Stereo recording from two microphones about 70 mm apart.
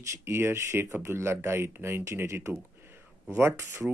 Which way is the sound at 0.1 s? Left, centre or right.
Right.